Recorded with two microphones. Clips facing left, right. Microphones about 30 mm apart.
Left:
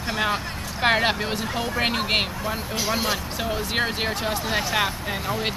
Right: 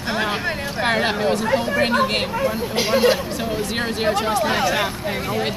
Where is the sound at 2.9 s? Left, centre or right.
Right.